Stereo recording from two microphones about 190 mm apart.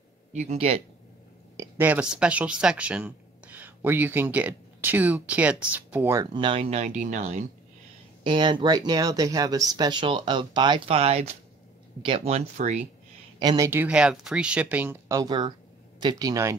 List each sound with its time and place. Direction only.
0.3 s speech: 35° right (ahead or behind)
1.6 s speech: 10° right (ahead or behind)
6.3 s speech: 25° right (ahead or behind)
8.2 s speech: 25° right (ahead or behind)
13.4 s speech: 20° right (ahead or behind)